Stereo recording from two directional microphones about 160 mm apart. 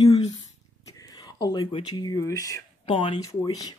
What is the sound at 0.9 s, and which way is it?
Speech, 20° left (ahead or behind).